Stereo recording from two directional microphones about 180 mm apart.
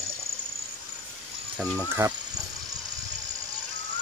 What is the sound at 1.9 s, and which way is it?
Speech, 15° right (ahead or behind).